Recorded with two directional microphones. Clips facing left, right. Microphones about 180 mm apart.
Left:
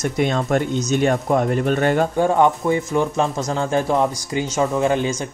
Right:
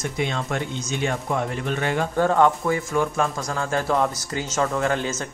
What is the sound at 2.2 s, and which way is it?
Speech, 15° left (ahead or behind).